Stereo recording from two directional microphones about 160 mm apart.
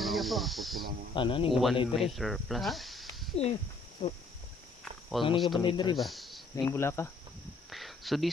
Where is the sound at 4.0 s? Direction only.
35° left (ahead or behind).